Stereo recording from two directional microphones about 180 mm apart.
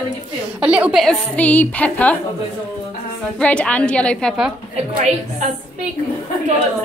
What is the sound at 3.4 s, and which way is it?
A woman's voice, 5° left (ahead or behind).